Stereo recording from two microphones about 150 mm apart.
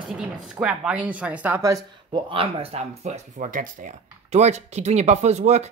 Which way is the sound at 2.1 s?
35° right (ahead or behind).